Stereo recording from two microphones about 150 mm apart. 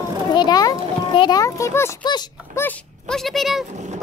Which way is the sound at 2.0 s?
30° left (ahead or behind).